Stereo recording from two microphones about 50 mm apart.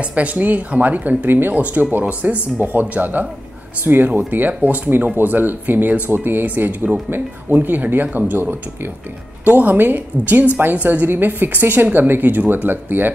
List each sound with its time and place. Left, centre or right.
0.0 s speech: right
4.5 s speech: right